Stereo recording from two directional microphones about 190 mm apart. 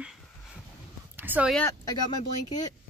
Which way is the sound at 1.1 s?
10° right (ahead or behind).